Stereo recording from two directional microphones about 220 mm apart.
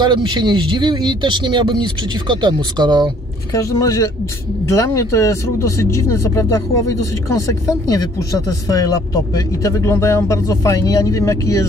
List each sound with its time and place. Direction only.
0.0 s speech: 20° right (ahead or behind)
3.5 s speech: 15° left (ahead or behind)